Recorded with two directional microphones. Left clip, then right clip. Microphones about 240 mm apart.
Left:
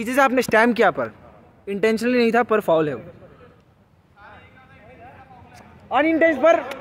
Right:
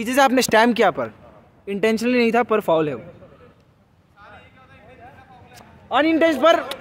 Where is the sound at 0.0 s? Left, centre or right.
Centre.